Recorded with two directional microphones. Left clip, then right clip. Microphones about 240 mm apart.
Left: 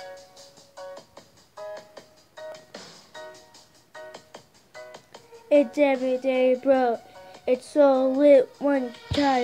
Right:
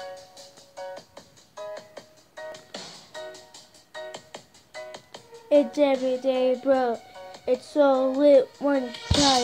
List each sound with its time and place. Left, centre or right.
1.1 s music: right
5.5 s speech: centre
8.8 s speech: right